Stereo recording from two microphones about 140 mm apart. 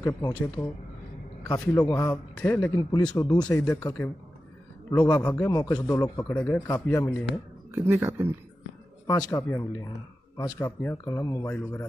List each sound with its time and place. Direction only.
0.0 s speech: 25° left (ahead or behind)
1.8 s speech: 25° left (ahead or behind)
2.0 s speech: 10° left (ahead or behind)
5.3 s speech: 25° left (ahead or behind)
7.7 s speech: 15° right (ahead or behind)
9.0 s a man's voice: 30° left (ahead or behind)